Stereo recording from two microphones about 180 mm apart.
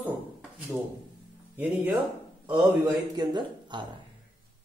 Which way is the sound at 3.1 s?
25° right (ahead or behind).